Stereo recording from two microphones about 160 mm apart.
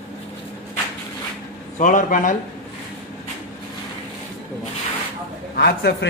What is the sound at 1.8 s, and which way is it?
Speech, 55° left (ahead or behind).